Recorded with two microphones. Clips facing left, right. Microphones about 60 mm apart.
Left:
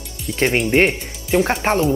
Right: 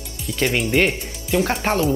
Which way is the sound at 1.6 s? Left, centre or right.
Left.